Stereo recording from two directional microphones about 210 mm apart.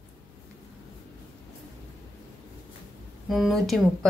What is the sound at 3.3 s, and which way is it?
Speech, centre (ahead or behind).